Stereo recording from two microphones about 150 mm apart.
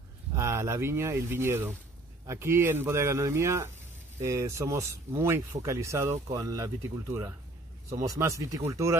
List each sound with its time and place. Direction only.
0.3 s speech: 20° right (ahead or behind)